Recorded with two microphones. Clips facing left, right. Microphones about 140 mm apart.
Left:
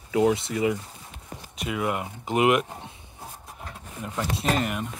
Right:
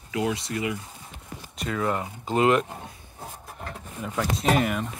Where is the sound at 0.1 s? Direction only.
25° left (ahead or behind).